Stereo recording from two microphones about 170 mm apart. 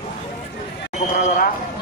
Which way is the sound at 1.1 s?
45° left (ahead or behind).